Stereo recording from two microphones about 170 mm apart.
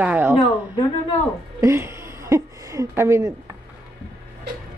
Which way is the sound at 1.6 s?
15° right (ahead or behind).